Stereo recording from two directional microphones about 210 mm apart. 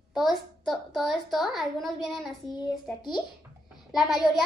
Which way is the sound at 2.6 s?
20° left (ahead or behind).